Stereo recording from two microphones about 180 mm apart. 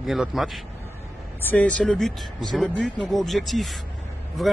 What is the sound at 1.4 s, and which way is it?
Speech, 10° left (ahead or behind).